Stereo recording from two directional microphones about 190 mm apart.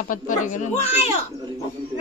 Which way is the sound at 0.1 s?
40° left (ahead or behind).